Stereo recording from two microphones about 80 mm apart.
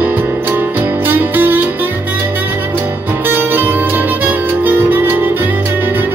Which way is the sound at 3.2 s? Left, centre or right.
Right.